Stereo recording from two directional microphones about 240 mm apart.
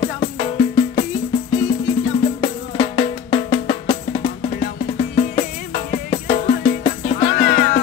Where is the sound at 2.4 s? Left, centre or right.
Left.